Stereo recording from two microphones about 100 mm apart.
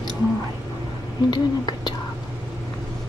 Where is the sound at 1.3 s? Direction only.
45° left (ahead or behind).